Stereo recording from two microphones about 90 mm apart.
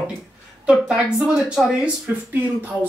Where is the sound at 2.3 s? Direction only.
20° right (ahead or behind).